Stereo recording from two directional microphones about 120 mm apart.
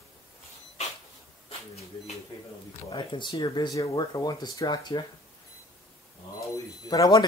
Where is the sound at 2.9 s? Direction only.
40° left (ahead or behind).